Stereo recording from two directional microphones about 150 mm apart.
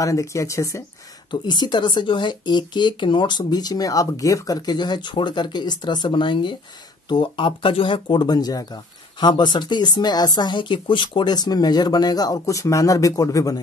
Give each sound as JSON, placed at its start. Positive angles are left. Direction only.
{"t": 0.0, "sound": "speech", "side_deg": 20}